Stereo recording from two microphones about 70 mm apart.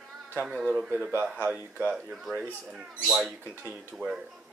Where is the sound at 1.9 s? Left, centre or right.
Centre.